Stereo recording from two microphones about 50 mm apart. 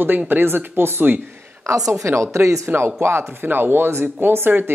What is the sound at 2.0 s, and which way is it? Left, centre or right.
Speech, right.